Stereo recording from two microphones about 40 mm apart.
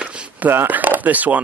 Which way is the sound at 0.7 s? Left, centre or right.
Right.